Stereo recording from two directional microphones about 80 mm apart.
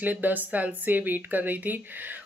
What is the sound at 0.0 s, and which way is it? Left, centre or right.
Speech, right.